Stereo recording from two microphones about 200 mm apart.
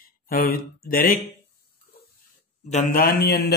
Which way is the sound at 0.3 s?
45° left (ahead or behind).